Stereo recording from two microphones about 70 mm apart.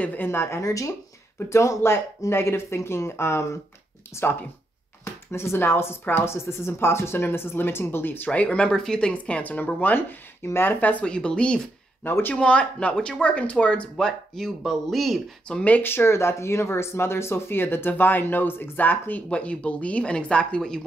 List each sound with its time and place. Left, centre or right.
0.0 s speech: left
0.6 s speech: left
8.3 s speech: centre
11.1 s speech: centre
12.0 s speech: left
12.4 s speech: centre
15.4 s speech: centre